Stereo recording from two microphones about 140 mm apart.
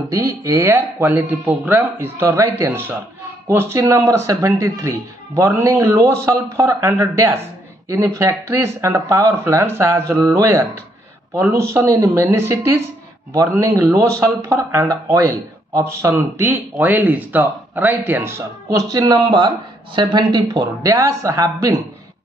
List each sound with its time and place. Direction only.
0.1 s speech: 25° right (ahead or behind)